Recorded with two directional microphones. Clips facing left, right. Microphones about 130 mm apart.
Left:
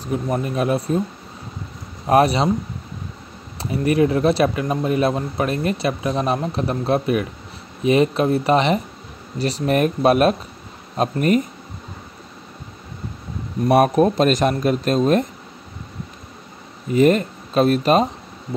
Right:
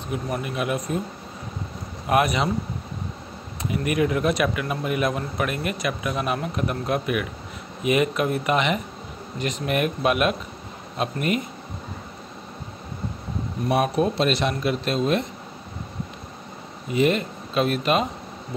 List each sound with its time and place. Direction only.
0.1 s a man's voice: 35° left (ahead or behind)
2.0 s a man's voice: 35° left (ahead or behind)
3.7 s a man's voice: 30° left (ahead or behind)
13.7 s a man's voice: 50° left (ahead or behind)
16.9 s a man's voice: 45° left (ahead or behind)